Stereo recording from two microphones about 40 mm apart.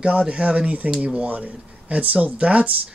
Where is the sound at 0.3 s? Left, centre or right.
Right.